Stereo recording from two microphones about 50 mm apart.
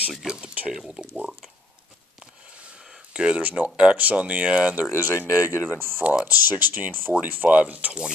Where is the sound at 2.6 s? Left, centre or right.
Right.